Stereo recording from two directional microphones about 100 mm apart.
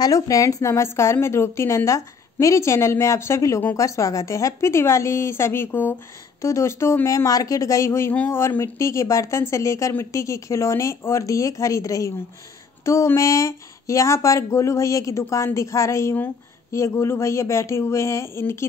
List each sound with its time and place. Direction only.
0.0 s speech: 35° left (ahead or behind)